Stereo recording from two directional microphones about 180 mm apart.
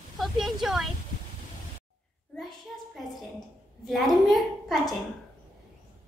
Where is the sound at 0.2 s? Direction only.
Centre (ahead or behind).